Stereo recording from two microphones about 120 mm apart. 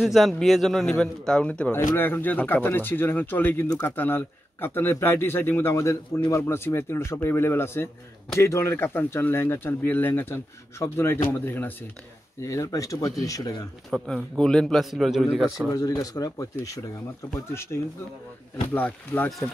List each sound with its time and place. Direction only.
0.0 s a man's voice: centre (ahead or behind); by 13.5 s 30° left (ahead or behind)
13.8 s a man's voice: centre (ahead or behind)
15.7 s speech: 30° left (ahead or behind); by 19.5 s 10° left (ahead or behind)